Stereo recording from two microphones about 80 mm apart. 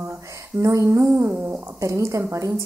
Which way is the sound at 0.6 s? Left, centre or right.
Right.